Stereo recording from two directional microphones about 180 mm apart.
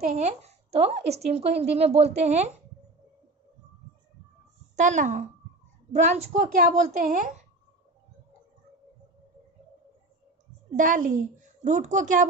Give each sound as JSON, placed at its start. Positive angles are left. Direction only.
{"t": 0.0, "sound": "a woman's voice", "side_deg": -40}
{"t": 4.7, "sound": "a woman's voice", "side_deg": -45}
{"t": 10.8, "sound": "a woman's voice", "side_deg": -45}